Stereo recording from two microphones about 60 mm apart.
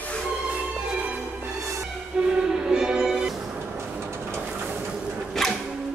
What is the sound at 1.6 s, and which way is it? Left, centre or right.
Music, right.